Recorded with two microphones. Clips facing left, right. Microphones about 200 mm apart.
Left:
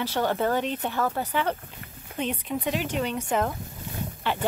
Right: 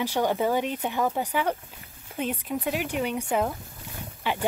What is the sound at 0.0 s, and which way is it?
Speech, 15° right (ahead or behind).